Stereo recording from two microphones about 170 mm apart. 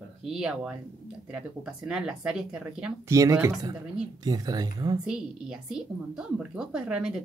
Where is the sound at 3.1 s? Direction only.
20° right (ahead or behind).